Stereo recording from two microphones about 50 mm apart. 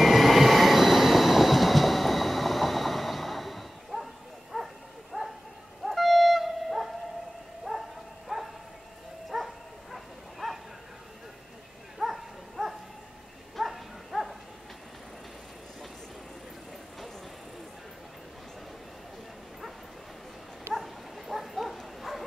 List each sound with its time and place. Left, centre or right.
0.0 s train: centre
5.1 s bow-wow: centre
5.9 s wind instrument: centre
7.7 s bow-wow: centre
8.3 s dog: centre
12.0 s livestock: centre
20.7 s bow-wow: centre